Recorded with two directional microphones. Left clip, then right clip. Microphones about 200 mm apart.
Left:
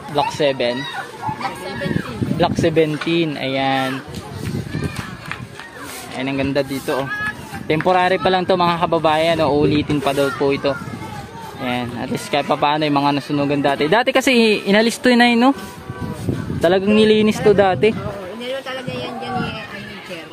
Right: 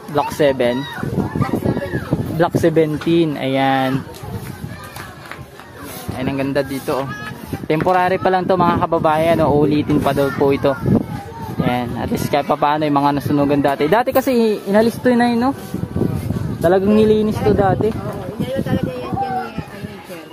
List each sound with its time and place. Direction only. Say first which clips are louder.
0.1 s speech: right 2 dB; 25° right (ahead or behind)
2.3 s speech: right 1 dB; 20° right (ahead or behind)
6.1 s speech: even; centre (ahead or behind)
16.6 s speech: right 1 dB; centre (ahead or behind)
17.5 s speech: left 3 dB; 15° left (ahead or behind)